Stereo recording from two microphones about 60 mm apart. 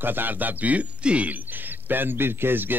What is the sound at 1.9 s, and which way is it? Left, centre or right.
Speech, right.